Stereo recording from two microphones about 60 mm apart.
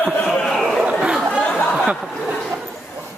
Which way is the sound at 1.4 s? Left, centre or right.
Centre.